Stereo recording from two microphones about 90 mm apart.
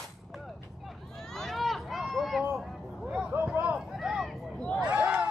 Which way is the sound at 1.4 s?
Centre (ahead or behind).